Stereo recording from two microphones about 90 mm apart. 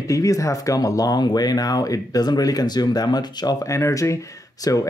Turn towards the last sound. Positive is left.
turn(degrees=40)  # may be behind; listen again after turning